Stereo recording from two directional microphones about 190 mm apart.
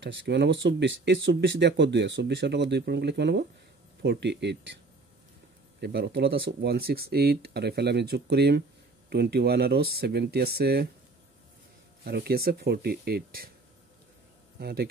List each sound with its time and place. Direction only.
0.0 s speech: 70° right (ahead or behind)
5.8 s speech: 60° right (ahead or behind)
12.0 s speech: 55° right (ahead or behind)
14.6 s speech: 55° right (ahead or behind)